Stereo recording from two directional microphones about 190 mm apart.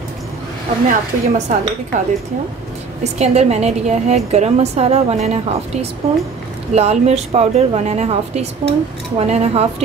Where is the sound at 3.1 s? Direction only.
35° right (ahead or behind).